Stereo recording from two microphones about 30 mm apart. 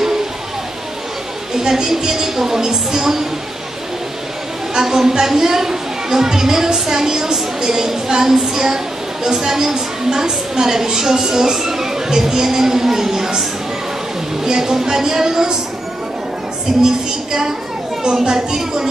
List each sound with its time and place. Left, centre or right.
1.6 s a woman's voice: centre
4.7 s a woman's voice: centre
14.4 s a woman's voice: centre
16.8 s a child's voice: right